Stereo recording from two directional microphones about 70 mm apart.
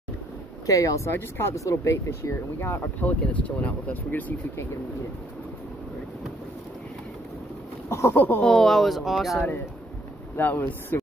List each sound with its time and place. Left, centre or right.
0.7 s speech: left
3.0 s speech: left
7.9 s a sound: left
8.4 s speech: centre
10.3 s speech: left